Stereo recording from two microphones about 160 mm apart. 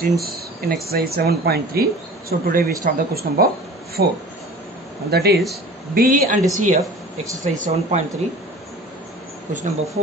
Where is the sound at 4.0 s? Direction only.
90° right.